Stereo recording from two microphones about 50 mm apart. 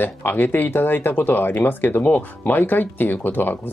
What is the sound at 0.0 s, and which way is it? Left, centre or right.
Speech, left.